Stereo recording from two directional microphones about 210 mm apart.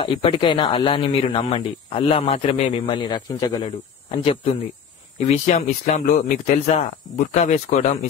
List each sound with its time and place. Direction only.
0.0 s speech: 25° left (ahead or behind)